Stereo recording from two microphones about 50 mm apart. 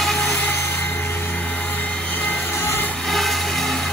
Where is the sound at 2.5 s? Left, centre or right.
Left.